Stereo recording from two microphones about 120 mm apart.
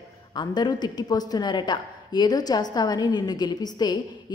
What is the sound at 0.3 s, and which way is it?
A woman's voice, 35° left (ahead or behind).